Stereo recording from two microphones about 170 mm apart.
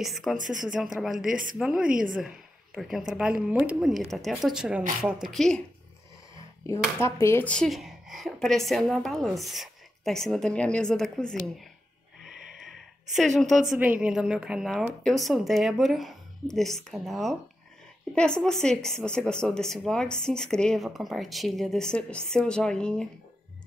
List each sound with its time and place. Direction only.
0.0 s a woman's voice: centre (ahead or behind)
1.2 s speech: 55° right (ahead or behind)
1.6 s a woman's voice: 5° right (ahead or behind)
7.0 s a woman's voice: 15° left (ahead or behind)
12.6 s a sound: centre (ahead or behind)
13.7 s a woman's voice: 5° right (ahead or behind)